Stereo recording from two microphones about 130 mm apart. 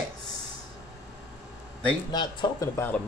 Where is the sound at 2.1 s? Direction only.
35° left (ahead or behind).